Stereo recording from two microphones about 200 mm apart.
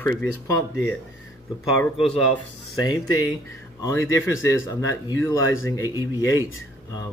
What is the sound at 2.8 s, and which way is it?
A man's voice, 20° left (ahead or behind).